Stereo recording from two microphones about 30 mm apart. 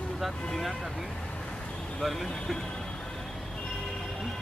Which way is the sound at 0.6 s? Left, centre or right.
Centre.